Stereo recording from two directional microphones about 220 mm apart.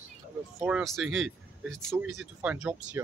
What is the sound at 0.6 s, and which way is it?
Speech, 5° right (ahead or behind).